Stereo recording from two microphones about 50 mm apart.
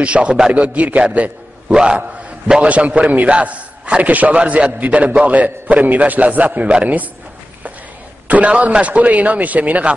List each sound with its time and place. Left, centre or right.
0.0 s a man's voice: right
1.7 s a man's voice: centre
8.3 s a man's voice: right